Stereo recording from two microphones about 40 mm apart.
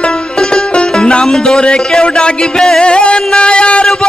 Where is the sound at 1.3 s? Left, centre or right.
Centre.